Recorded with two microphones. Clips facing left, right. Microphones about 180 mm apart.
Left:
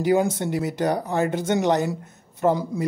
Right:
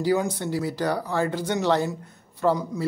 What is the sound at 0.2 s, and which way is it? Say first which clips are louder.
Speech: left 3 dB; 25° left (ahead or behind).